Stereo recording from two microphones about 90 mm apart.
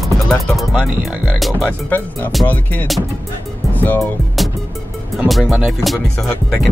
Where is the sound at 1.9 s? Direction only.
20° left (ahead or behind).